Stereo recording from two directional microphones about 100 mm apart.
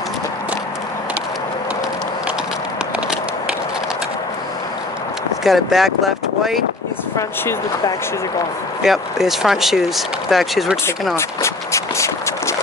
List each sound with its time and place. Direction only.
5.4 s speech: centre (ahead or behind)
8.8 s speech: 5° right (ahead or behind)
11.1 s a sound: 30° left (ahead or behind)